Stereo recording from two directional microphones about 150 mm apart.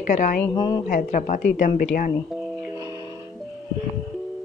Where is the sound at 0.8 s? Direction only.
65° left (ahead or behind).